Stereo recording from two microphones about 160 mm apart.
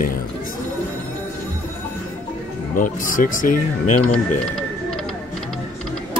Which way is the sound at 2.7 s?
60° left (ahead or behind).